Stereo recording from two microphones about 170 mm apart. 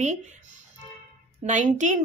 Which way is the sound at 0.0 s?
45° right (ahead or behind).